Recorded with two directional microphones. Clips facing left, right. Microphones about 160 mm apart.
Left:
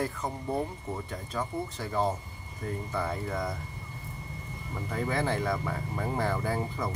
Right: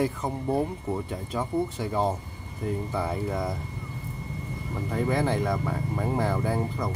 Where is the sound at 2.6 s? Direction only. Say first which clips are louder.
Right 4 dB; 10° right (ahead or behind).